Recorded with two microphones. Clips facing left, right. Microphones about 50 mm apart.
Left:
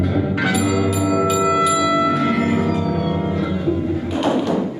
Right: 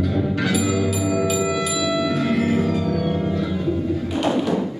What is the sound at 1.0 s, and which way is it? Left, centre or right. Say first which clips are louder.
Music: left 3 dB; centre.